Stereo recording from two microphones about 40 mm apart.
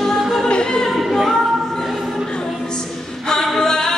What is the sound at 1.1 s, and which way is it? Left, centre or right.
Music, centre.